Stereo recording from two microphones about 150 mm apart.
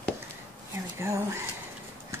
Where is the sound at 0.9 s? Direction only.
20° right (ahead or behind).